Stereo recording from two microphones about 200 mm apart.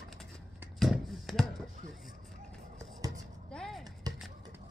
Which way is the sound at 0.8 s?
Centre (ahead or behind).